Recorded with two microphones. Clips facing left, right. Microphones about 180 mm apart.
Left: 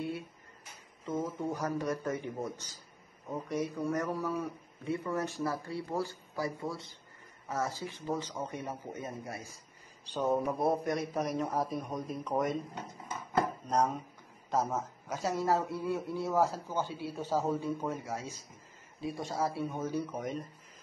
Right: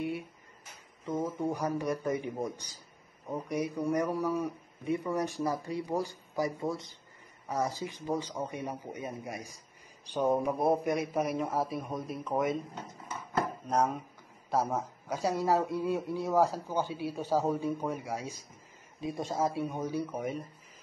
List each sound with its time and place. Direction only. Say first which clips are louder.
0.0 s a sound: right 2 dB; 15° right (ahead or behind)
1.0 s speech: right 2 dB; 10° right (ahead or behind)
13.7 s speech: right 1 dB; 10° right (ahead or behind)